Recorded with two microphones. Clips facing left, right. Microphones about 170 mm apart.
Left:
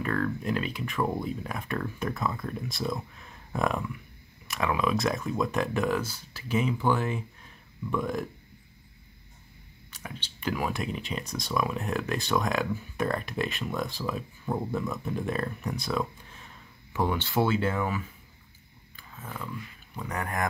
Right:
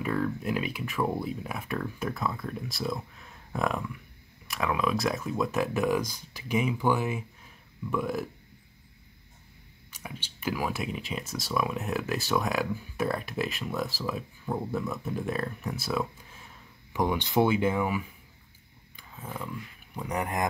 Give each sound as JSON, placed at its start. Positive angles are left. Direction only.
{"t": 0.0, "sound": "speech", "side_deg": -10}
{"t": 9.8, "sound": "speech", "side_deg": -10}
{"t": 18.9, "sound": "a sound", "side_deg": -20}
{"t": 20.0, "sound": "speech", "side_deg": -20}